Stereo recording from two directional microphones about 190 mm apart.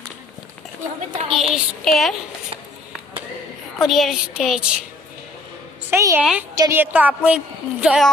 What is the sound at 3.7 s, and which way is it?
Speech, centre (ahead or behind).